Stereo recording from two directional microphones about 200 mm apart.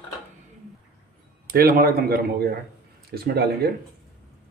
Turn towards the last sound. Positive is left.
turn(degrees=-55)  # may be behind; listen again after turning